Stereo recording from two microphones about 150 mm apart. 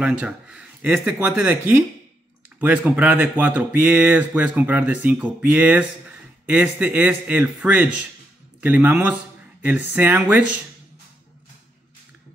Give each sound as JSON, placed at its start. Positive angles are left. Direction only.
{"t": 0.0, "sound": "speech", "side_deg": -5}